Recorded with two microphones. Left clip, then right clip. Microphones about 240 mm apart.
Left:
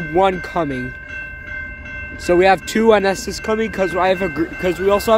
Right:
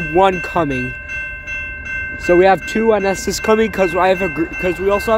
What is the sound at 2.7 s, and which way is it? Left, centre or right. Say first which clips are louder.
Speech: left 1 dB; centre.